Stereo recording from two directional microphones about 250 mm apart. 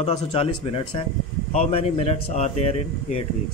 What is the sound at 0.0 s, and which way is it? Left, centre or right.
Speech, left.